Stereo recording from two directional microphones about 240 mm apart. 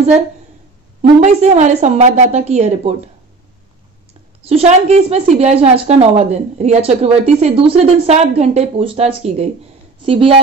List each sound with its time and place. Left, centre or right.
1.2 s a woman's voice: right
4.4 s a woman's voice: right